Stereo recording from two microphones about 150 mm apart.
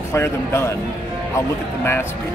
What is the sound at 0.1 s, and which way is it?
Speech, 20° left (ahead or behind).